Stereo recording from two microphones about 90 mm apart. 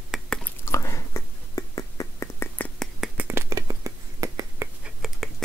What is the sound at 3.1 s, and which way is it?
Finger snapping, 25° right (ahead or behind).